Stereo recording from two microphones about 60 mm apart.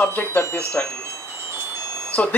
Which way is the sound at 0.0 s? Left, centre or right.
Left.